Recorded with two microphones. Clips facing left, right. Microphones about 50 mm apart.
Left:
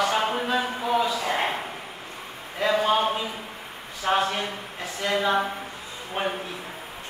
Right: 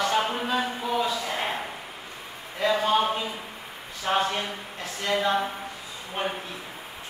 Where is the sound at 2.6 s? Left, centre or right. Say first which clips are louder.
Left 1 dB; centre.